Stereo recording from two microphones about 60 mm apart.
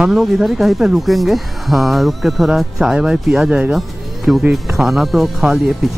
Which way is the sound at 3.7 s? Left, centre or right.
Centre.